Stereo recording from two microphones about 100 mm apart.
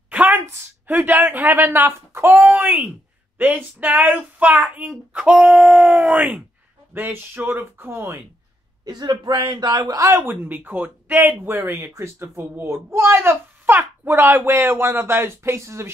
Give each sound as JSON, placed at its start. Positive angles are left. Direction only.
{"t": 0.1, "sound": "a sound", "side_deg": -15}
{"t": 0.8, "sound": "a man's voice", "side_deg": -15}
{"t": 3.3, "sound": "child singing", "side_deg": -15}
{"t": 6.9, "sound": "a man's voice", "side_deg": -20}
{"t": 8.8, "sound": "a man's voice", "side_deg": -45}